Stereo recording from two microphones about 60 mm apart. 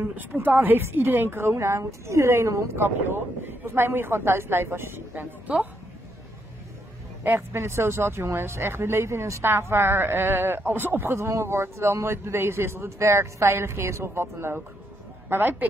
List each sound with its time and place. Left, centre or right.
0.0 s speech: right
2.7 s speech: right
5.5 s a woman's voice: right
7.3 s speech: right